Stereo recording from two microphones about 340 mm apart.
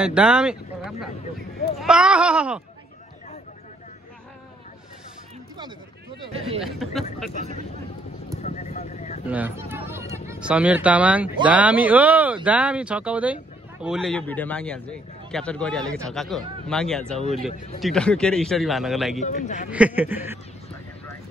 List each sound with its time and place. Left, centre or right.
0.0 s speech: centre
6.6 s speech: centre
8.4 s vehicle: centre
9.2 s speech: centre
19.2 s a man's voice: left
19.7 s speech: centre